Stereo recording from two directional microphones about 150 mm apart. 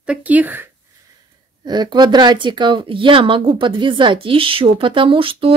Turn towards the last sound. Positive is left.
turn(degrees=-35)  # may be behind; listen again after turning